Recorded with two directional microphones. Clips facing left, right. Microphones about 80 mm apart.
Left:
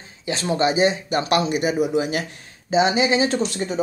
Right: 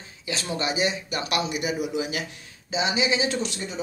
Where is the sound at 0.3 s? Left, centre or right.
Left.